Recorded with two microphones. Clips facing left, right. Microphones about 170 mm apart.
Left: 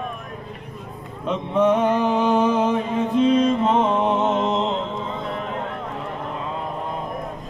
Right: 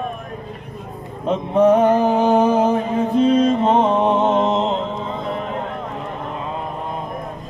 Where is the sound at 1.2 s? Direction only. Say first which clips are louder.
Right 4 dB; 45° right (ahead or behind).